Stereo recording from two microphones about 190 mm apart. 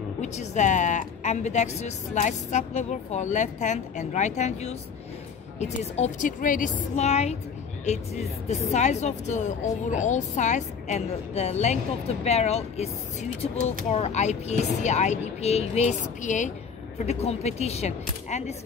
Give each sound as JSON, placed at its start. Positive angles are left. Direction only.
{"t": 0.2, "sound": "a woman's voice", "side_deg": 40}